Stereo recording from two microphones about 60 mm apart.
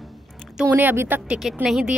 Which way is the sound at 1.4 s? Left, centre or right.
Centre.